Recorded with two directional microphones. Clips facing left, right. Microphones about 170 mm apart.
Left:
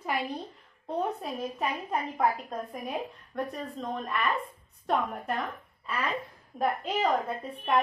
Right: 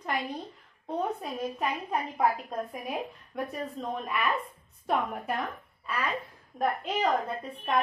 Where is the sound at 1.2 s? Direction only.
Centre (ahead or behind).